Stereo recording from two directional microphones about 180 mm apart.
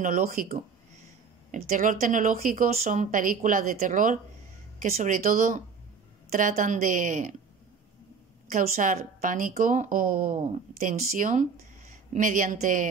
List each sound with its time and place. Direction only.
0.0 s speech: 45° right (ahead or behind)
8.5 s speech: 45° right (ahead or behind)